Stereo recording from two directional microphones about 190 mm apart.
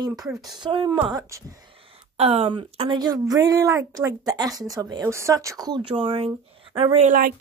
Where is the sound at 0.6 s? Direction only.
25° right (ahead or behind).